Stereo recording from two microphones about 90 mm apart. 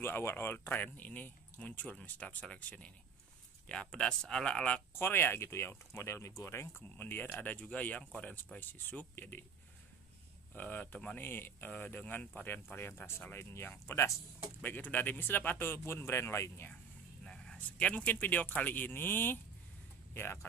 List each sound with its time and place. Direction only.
0.0 s speech: 25° left (ahead or behind)
4.9 s speech: 25° left (ahead or behind)
10.5 s speech: 20° left (ahead or behind)
17.2 s speech: 10° left (ahead or behind)